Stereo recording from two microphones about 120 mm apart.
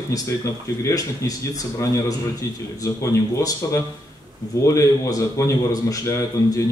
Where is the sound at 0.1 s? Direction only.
30° left (ahead or behind).